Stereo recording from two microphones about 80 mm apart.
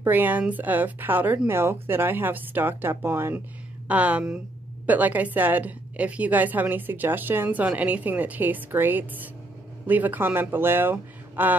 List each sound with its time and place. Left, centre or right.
0.0 s a woman's voice: right
3.8 s a woman's voice: centre